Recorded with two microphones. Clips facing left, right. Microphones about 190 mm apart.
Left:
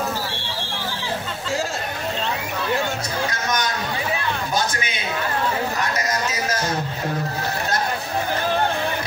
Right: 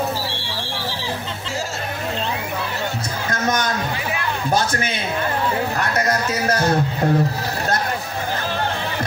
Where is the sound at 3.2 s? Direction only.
50° right (ahead or behind).